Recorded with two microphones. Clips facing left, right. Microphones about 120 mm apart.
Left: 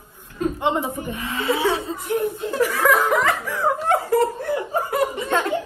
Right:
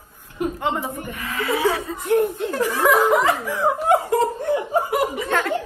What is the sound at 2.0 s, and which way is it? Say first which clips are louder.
Speech: right 6 dB; 60° right (ahead or behind).